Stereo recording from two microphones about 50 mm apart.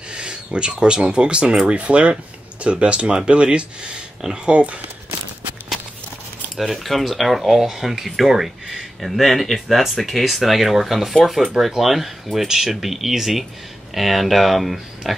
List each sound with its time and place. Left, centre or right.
0.1 s speech: centre
6.5 s speech: centre